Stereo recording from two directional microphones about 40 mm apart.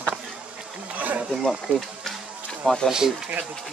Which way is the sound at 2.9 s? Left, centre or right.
Centre.